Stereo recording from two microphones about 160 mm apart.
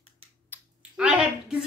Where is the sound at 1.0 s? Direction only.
5° right (ahead or behind).